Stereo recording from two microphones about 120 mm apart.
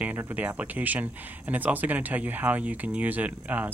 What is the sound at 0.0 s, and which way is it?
Speech, 15° right (ahead or behind).